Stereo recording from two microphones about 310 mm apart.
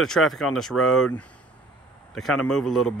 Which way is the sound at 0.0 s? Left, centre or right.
Centre.